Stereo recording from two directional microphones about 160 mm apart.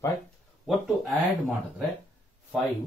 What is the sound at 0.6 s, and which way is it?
Speech, centre (ahead or behind).